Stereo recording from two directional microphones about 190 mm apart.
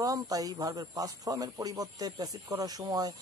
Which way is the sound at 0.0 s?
20° right (ahead or behind).